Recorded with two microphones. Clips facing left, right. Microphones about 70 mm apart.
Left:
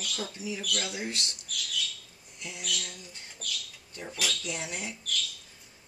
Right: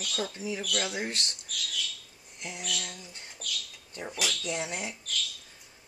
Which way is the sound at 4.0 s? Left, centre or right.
Centre.